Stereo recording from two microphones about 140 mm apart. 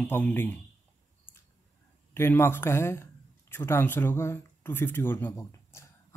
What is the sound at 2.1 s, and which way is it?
Speech, 15° left (ahead or behind).